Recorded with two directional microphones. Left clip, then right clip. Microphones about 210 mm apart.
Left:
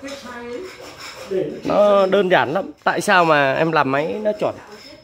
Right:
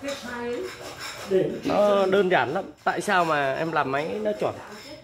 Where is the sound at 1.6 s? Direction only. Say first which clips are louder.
Left 9 dB; 45° left (ahead or behind).